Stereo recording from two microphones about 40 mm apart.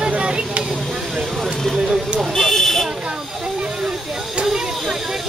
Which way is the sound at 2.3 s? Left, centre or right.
Centre.